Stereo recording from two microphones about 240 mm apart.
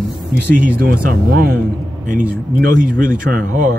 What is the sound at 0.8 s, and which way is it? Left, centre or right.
Speech, right.